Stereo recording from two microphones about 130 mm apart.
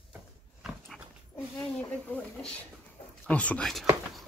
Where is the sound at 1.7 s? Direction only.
10° left (ahead or behind).